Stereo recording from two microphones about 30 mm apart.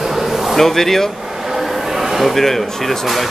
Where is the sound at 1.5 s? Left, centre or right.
Centre.